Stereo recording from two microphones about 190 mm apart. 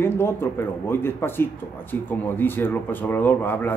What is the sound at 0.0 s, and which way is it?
Speech, 15° left (ahead or behind).